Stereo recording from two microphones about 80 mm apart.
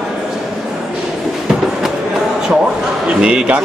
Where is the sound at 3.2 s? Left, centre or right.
Centre.